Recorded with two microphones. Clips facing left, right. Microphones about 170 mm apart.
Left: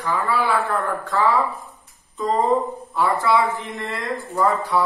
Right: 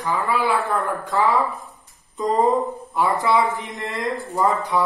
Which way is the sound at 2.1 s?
20° right (ahead or behind).